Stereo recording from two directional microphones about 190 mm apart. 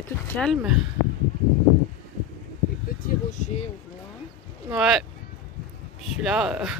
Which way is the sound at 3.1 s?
40° left (ahead or behind).